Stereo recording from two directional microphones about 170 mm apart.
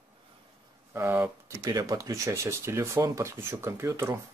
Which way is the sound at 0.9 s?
10° right (ahead or behind).